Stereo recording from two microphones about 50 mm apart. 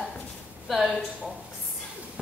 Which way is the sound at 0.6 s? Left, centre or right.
Centre.